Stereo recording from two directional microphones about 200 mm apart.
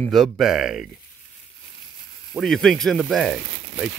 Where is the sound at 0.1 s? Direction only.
Centre (ahead or behind).